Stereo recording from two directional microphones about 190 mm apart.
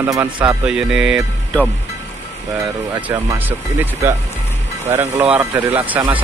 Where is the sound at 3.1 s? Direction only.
15° right (ahead or behind).